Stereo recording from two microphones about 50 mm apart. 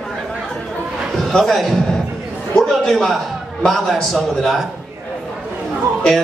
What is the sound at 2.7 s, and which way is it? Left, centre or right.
A man's voice, centre.